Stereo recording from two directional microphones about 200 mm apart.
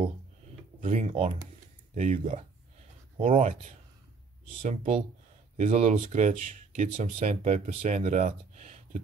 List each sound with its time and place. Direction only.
0.7 s speech: 35° right (ahead or behind)
4.6 s speech: 30° right (ahead or behind)